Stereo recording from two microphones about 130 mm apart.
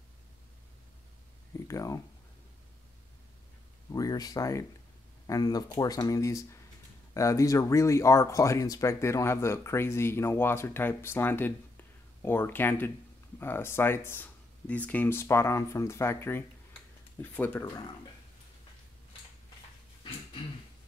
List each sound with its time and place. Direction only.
1.7 s speech: 25° left (ahead or behind)
3.9 s speech: 30° left (ahead or behind)